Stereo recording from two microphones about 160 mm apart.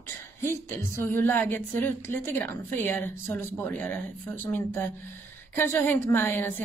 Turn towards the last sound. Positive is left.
turn(degrees=15)  # may be behind; listen again after turning